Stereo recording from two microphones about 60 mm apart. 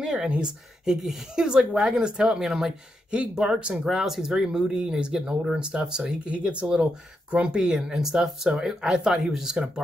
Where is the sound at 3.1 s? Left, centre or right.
Centre.